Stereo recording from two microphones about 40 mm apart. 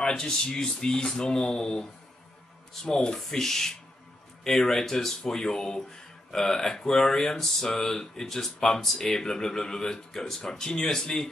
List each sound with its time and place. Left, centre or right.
0.0 s speech: centre